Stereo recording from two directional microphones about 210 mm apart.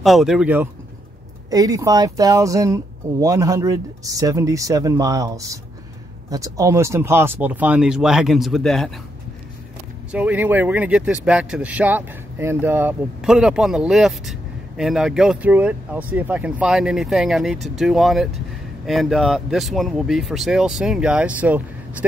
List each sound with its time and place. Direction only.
0.0 s speech: centre (ahead or behind)
1.5 s speech: 15° right (ahead or behind); by 8.9 s centre (ahead or behind)
10.1 s speech: 5° right (ahead or behind)